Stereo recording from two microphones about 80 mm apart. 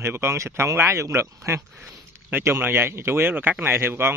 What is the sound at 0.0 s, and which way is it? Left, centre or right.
A man's voice, right.